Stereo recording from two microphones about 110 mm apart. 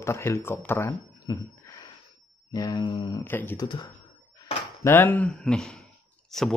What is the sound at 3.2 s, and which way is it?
Speech, 15° left (ahead or behind).